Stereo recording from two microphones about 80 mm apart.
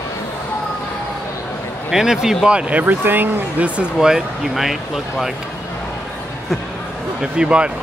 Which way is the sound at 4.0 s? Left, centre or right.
Centre.